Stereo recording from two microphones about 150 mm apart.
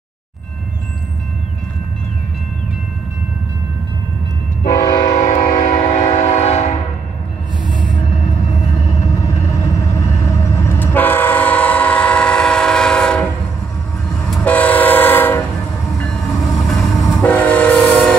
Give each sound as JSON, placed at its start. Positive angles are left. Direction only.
{"t": 4.6, "sound": "train", "side_deg": 60}
{"t": 9.5, "sound": "train", "side_deg": 20}
{"t": 14.3, "sound": "train", "side_deg": 10}